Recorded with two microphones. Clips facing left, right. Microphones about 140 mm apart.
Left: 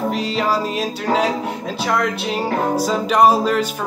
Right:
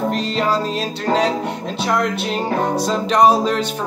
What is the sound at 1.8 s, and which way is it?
Speech, centre (ahead or behind).